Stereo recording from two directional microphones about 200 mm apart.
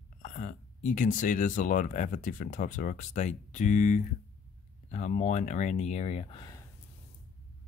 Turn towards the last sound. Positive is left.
turn(degrees=25)  # may be behind; listen again after turning